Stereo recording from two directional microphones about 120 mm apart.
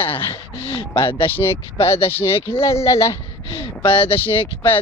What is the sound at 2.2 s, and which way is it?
Speech, 50° left (ahead or behind).